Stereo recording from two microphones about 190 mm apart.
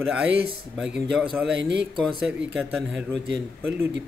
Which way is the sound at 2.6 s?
Centre (ahead or behind).